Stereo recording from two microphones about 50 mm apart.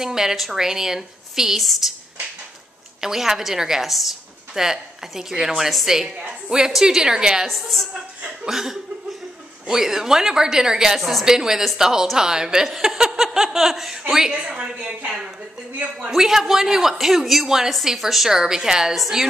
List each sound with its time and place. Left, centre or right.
0.0 s a woman's voice: centre
3.0 s a woman's voice: centre
6.0 s a woman's voice: centre
7.4 s a woman's voice: centre
11.0 s a woman's voice: centre
11.2 s a woman's voice: centre
14.3 s a woman's voice: centre
16.1 s a woman's voice: centre